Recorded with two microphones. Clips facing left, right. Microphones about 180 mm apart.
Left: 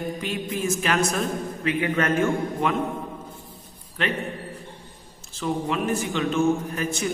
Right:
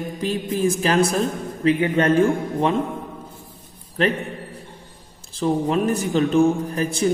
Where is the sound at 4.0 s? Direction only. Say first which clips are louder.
Right 7 dB; 35° right (ahead or behind).